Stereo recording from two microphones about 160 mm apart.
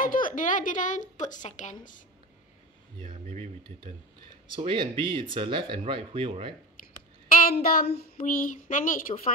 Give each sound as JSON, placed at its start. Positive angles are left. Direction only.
{"t": 0.0, "sound": "a woman's voice", "side_deg": 60}
{"t": 3.0, "sound": "a sound", "side_deg": -40}
{"t": 4.6, "sound": "speech", "side_deg": -30}
{"t": 6.8, "sound": "a sound", "side_deg": 60}
{"t": 7.2, "sound": "child singing", "side_deg": 60}
{"t": 7.6, "sound": "speech", "side_deg": 75}